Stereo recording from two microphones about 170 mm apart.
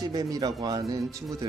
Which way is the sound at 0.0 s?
20° right (ahead or behind).